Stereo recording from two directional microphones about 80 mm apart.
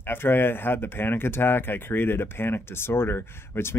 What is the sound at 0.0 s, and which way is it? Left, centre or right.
Speech, left.